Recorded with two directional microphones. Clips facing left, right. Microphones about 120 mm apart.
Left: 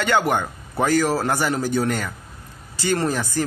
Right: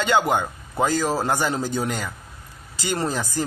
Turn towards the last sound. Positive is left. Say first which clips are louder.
# left 3 dB
turn(degrees=-15)  # may be behind; listen again after turning